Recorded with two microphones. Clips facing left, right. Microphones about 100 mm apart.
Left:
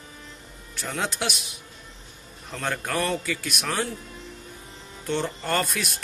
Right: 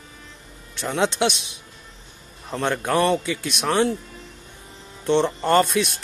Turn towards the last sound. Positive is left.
turn(degrees=-25)  # may be behind; listen again after turning